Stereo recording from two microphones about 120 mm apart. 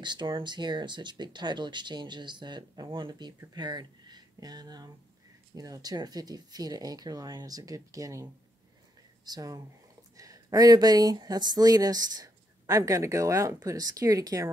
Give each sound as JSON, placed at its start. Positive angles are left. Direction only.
{"t": 0.0, "sound": "speech", "side_deg": -40}